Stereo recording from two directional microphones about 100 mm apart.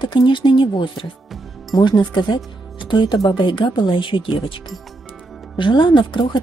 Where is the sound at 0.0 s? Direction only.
50° left (ahead or behind).